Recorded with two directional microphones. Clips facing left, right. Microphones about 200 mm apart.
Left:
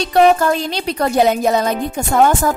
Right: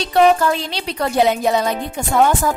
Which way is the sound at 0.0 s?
45° left (ahead or behind).